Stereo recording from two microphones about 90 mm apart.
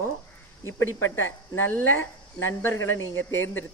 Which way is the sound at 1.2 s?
25° left (ahead or behind).